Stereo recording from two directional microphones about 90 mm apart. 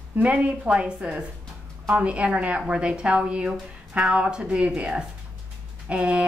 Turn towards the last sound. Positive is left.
turn(degrees=-10)  # may be behind; listen again after turning